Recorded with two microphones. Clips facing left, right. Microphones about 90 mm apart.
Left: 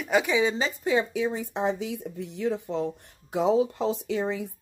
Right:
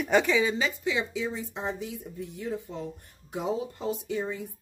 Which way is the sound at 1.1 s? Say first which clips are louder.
Left 5 dB; 60° left (ahead or behind).